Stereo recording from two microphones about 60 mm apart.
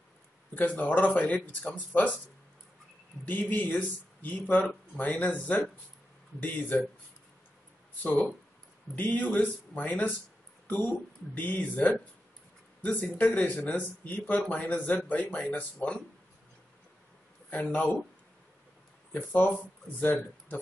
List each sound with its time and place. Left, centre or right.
0.6 s speech: left
3.3 s speech: left
8.0 s speech: left
13.0 s speech: left
17.5 s speech: left
19.3 s speech: left